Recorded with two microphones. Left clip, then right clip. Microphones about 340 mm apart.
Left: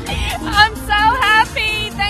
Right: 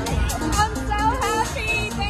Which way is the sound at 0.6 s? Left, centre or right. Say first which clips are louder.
Left 10 dB; left.